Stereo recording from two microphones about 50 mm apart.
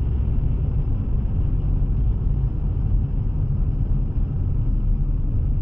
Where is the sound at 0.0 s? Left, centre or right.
Right.